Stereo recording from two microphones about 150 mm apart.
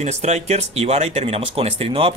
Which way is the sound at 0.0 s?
50° right (ahead or behind).